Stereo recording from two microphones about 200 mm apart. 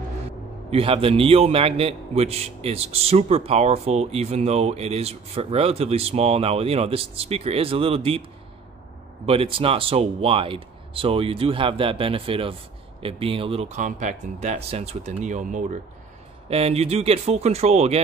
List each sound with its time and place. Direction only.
0.7 s a man's voice: 30° right (ahead or behind)
9.2 s a man's voice: 30° right (ahead or behind)